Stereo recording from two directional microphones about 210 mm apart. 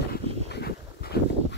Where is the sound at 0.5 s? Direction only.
50° left (ahead or behind).